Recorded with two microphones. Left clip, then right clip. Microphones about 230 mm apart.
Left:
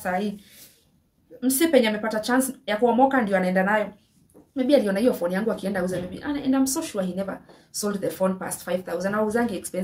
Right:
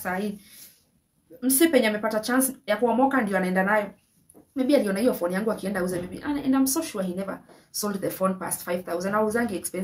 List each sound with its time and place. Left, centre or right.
0.0 s a woman's voice: centre
1.4 s a woman's voice: centre